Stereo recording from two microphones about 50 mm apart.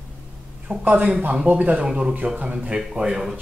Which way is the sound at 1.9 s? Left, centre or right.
Centre.